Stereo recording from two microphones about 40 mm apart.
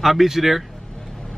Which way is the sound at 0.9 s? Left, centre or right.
Centre.